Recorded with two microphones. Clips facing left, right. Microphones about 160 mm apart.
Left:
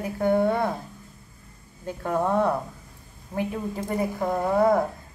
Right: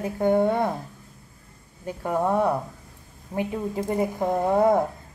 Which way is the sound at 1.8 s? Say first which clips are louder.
Right 1 dB; 10° right (ahead or behind).